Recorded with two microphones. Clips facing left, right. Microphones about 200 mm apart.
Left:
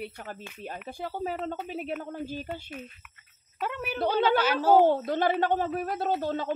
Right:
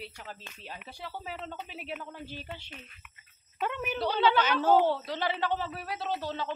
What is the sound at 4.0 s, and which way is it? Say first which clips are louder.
Speech: left 3 dB; 50° left (ahead or behind).